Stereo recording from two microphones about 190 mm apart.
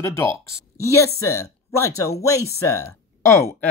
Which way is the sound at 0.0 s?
15° left (ahead or behind).